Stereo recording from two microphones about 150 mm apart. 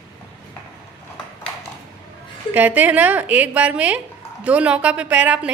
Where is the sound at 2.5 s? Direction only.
10° right (ahead or behind).